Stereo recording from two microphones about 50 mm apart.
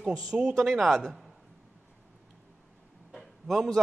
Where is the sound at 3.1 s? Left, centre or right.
Centre.